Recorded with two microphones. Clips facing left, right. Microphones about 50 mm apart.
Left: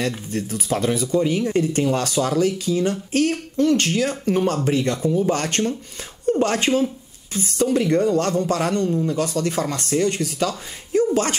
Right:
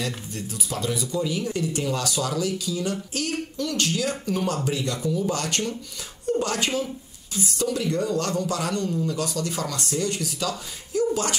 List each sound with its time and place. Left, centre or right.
0.0 s speech: left